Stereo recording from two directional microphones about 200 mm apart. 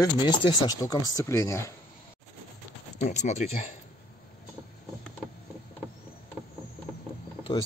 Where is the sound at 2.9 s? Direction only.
35° left (ahead or behind).